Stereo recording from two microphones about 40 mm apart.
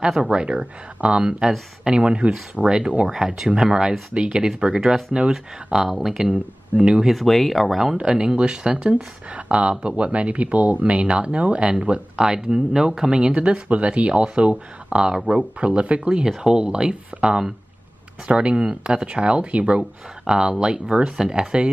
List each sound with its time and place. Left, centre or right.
0.2 s speech: centre
2.3 s speech: centre
3.1 s speech: centre
5.8 s speech: centre
7.1 s speech: centre
8.0 s speech: right
13.3 s speech: right
15.1 s speech: centre
15.6 s speech: right
16.3 s speech: centre
20.2 s speech: centre